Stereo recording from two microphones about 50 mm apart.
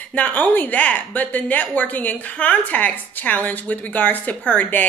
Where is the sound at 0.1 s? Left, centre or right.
Left.